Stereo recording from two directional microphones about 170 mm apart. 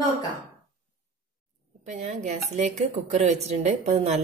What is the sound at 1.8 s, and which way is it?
Speech, 45° right (ahead or behind).